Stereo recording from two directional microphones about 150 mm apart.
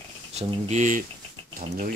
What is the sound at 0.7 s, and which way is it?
Speech, 60° right (ahead or behind).